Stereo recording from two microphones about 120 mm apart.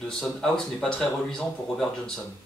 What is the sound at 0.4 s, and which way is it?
Speech, 5° left (ahead or behind).